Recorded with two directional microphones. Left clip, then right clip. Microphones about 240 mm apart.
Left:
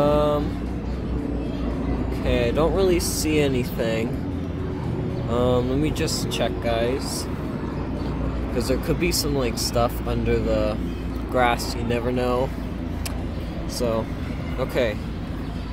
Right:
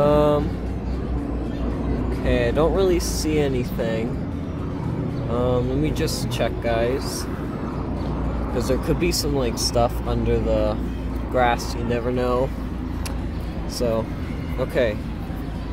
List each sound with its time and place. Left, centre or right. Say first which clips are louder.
0.0 s vehicle: right 2 dB; centre
2.2 s speech: right 1 dB; centre
5.3 s speech: left 1 dB; centre
8.5 s speech: right 1 dB; centre
13.7 s speech: right 1 dB; centre